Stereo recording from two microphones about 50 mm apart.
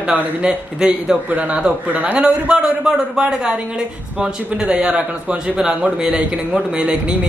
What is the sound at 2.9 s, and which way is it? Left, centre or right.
A man's voice, centre.